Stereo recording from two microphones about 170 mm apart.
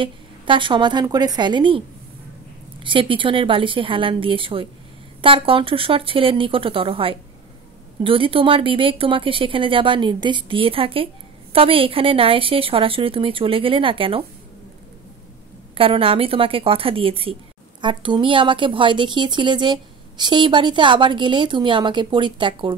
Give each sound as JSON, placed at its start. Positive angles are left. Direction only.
{"t": 0.0, "sound": "speech", "side_deg": -30}
{"t": 2.8, "sound": "speech", "side_deg": -30}
{"t": 15.7, "sound": "speech", "side_deg": -35}